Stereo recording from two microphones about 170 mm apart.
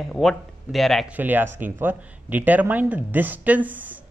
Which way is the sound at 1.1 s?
10° right (ahead or behind).